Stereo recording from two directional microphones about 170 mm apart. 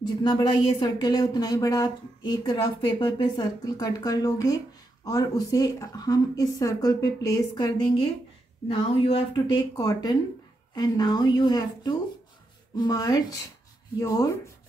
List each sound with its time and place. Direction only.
0.2 s speech: 30° left (ahead or behind)
8.6 s speech: 35° left (ahead or behind)